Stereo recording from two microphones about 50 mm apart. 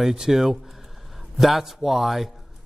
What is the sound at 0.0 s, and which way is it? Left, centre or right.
A man's voice, centre.